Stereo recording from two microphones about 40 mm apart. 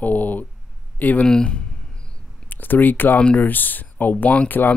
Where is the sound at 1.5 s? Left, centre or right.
Left.